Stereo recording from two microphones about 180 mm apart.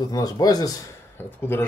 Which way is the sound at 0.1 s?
20° left (ahead or behind).